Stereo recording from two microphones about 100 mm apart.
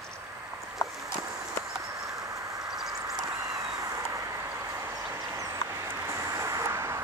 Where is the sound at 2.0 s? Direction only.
35° right (ahead or behind).